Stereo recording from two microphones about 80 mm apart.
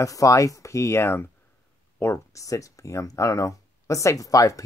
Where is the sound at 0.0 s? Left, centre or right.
Left.